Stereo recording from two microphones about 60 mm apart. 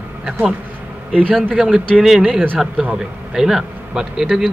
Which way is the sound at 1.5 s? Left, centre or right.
Centre.